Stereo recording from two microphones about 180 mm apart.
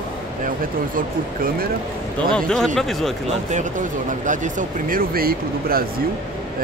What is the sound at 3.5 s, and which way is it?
Speech, 45° right (ahead or behind).